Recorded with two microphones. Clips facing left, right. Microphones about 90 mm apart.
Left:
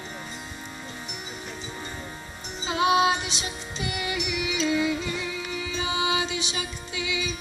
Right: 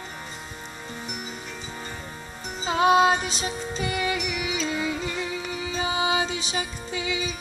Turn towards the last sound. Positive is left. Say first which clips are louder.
# right 2 dB
turn(degrees=-35)  # may be behind; listen again after turning